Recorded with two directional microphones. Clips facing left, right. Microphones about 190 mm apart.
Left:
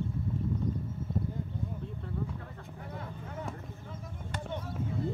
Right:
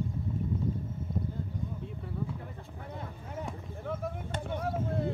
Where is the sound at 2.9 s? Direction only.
20° right (ahead or behind).